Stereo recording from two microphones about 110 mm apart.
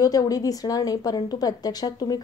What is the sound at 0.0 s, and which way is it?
A woman's voice, 35° left (ahead or behind).